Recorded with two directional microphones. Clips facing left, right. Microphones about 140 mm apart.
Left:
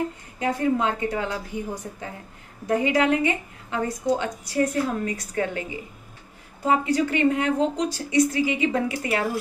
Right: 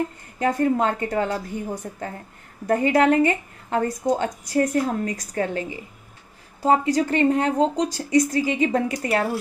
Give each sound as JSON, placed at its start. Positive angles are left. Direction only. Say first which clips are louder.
{"t": 0.4, "sound": "a woman's voice", "louder": "right 3 dB", "side_deg": -45}
{"t": 2.6, "sound": "a woman's voice", "louder": "right 3 dB", "side_deg": -45}